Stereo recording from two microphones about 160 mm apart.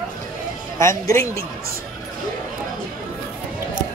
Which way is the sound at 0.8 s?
15° left (ahead or behind).